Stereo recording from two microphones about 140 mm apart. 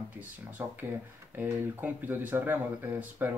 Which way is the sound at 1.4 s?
15° right (ahead or behind).